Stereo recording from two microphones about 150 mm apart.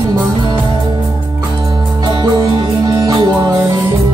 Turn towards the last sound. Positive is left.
turn(degrees=-25)  # may be behind; listen again after turning